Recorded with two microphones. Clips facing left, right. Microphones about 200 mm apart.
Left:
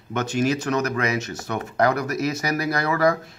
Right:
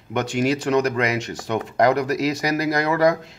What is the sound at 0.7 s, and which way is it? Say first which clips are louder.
Speech: right 3 dB; 15° right (ahead or behind).